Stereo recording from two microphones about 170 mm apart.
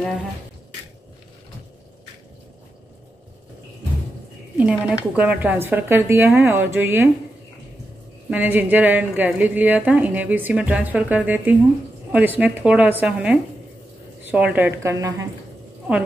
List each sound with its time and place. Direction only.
4.6 s a woman's voice: 5° right (ahead or behind)
8.3 s a woman's voice: 10° right (ahead or behind)